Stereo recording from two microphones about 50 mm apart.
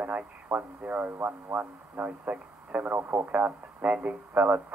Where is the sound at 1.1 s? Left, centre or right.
Right.